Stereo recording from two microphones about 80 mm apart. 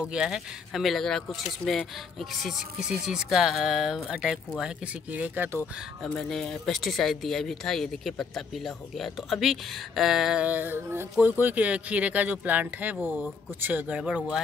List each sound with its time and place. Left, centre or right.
0.0 s speech: centre
2.1 s speech: centre; by 5.6 s right
6.1 s speech: centre
10.4 s speech: right